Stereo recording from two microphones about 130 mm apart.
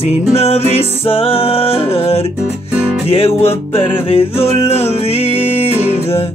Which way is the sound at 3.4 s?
45° left (ahead or behind).